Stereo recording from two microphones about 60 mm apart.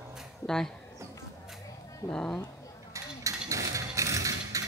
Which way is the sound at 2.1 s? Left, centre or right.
Left.